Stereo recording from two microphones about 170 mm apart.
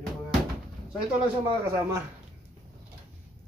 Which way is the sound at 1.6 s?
15° right (ahead or behind).